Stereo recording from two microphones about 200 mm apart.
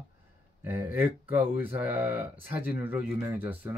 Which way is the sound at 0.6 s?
10° right (ahead or behind).